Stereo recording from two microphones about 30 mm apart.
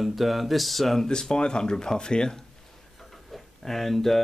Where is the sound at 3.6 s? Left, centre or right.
Centre.